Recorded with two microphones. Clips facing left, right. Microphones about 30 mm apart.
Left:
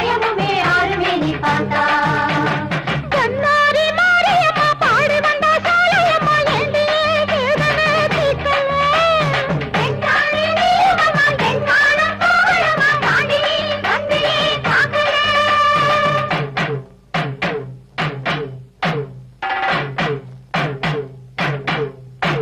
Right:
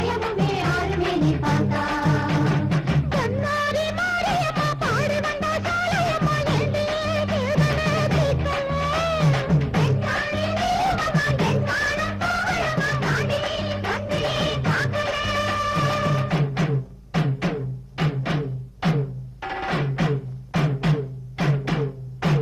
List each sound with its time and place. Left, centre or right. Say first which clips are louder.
0.0 s music: left 7 dB; left